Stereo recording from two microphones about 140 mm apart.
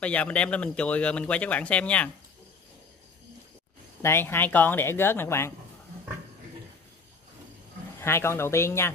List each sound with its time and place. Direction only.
0.0 s a man's voice: 10° left (ahead or behind)
4.0 s a man's voice: 15° left (ahead or behind)
8.0 s speech: 20° left (ahead or behind)